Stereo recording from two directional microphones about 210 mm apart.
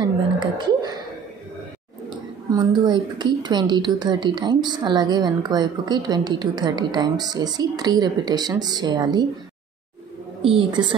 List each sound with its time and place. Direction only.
0.0 s a woman's voice: 20° right (ahead or behind)
2.5 s a woman's voice: 20° right (ahead or behind)
10.4 s a woman's voice: 25° right (ahead or behind)